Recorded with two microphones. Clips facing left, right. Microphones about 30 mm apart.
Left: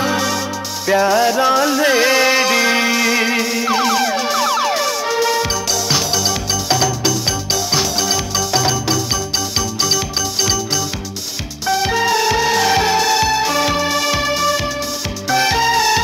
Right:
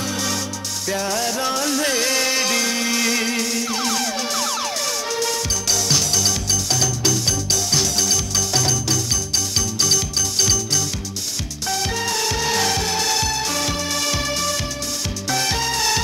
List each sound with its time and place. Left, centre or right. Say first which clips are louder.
0.8 s music: left 10 dB; left
11.6 s music: left 8 dB; centre